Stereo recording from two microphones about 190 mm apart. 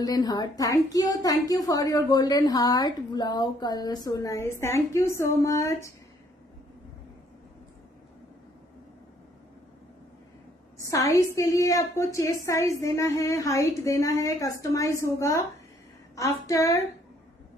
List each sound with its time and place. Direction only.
0.0 s a woman's voice: 20° left (ahead or behind)
10.8 s a woman's voice: 15° left (ahead or behind)